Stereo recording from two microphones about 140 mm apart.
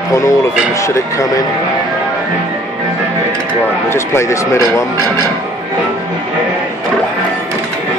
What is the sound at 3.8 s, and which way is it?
Speech, 20° left (ahead or behind).